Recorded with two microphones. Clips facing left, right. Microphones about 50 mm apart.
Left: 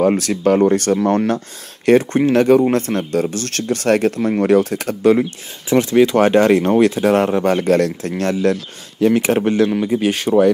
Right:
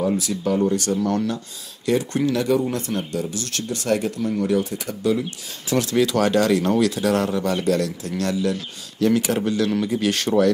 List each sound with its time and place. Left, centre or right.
0.0 s speech: left
5.7 s speech: left
9.7 s speech: left